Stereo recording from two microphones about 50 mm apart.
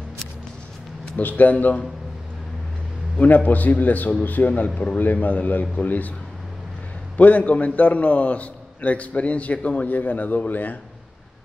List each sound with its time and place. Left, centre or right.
1.1 s a man's voice: left
3.2 s a man's voice: left
7.2 s a man's voice: left